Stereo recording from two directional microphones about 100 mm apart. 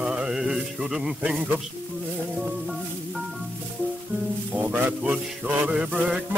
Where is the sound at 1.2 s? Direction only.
10° right (ahead or behind).